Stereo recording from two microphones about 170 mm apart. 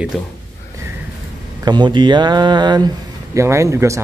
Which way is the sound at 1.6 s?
25° right (ahead or behind).